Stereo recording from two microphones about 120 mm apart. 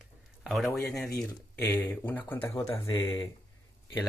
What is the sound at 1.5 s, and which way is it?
Speech, 15° left (ahead or behind).